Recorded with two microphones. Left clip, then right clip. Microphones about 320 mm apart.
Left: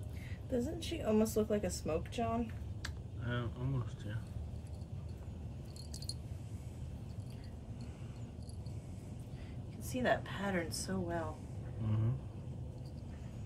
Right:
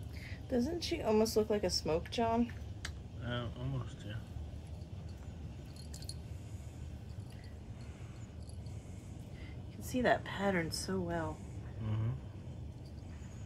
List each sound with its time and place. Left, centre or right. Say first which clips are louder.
0.5 s a woman's voice: right 3 dB; right
2.8 s speech: even; centre
9.8 s a woman's voice: right 2 dB; right
11.8 s a sound: left 2 dB; centre